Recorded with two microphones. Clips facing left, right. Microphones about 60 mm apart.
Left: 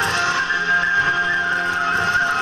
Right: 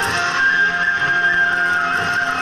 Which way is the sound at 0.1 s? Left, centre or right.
Right.